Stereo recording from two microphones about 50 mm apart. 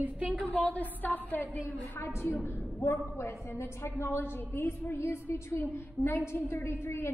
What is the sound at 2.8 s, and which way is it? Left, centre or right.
A woman's voice, left.